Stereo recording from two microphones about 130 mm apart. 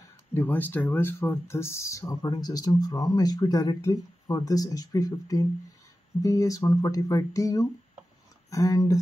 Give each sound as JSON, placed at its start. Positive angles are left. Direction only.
{"t": 0.3, "sound": "speech", "side_deg": 15}